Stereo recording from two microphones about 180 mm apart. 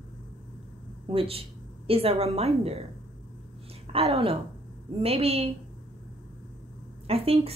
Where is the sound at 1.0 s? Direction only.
30° right (ahead or behind).